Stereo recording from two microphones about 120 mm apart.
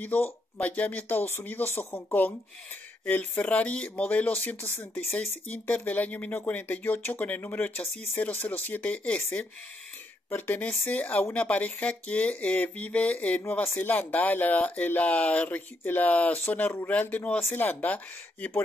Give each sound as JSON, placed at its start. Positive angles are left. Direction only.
{"t": 0.0, "sound": "speech", "side_deg": 15}